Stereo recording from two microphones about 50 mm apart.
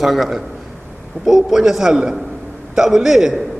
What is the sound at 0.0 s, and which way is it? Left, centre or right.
A man's voice, centre.